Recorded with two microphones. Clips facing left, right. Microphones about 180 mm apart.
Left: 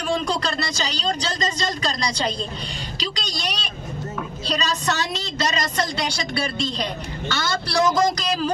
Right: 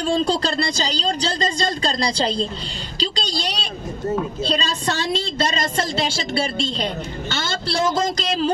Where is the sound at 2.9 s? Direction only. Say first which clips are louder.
Right 7 dB; 30° right (ahead or behind).